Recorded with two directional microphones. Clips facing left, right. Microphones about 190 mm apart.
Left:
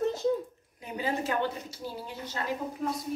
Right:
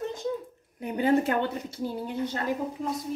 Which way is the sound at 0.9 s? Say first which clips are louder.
Right 7 dB; 55° right (ahead or behind).